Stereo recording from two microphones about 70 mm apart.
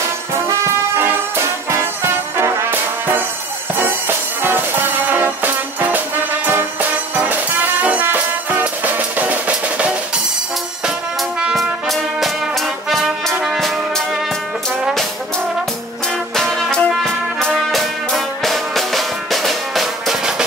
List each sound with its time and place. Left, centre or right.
2.3 s music: right
4.4 s music: right
7.8 s music: right
11.5 s brass instrument: centre
12.9 s music: centre
16.3 s music: centre